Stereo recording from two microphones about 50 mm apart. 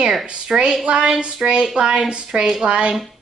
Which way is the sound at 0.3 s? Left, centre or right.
Centre.